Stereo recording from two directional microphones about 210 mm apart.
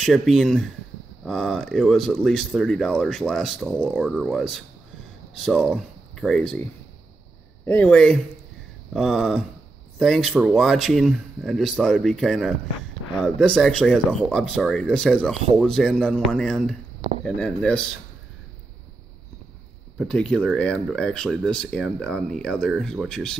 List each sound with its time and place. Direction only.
0.0 s speech: centre (ahead or behind)
7.6 s speech: 10° left (ahead or behind)
20.0 s speech: 5° left (ahead or behind)